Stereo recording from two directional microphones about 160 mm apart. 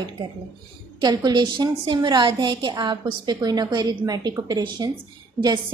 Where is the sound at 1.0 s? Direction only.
25° right (ahead or behind).